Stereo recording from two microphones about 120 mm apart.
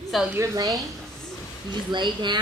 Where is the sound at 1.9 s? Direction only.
40° right (ahead or behind).